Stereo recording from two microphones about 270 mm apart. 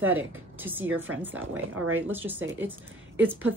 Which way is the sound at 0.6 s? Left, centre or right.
Centre.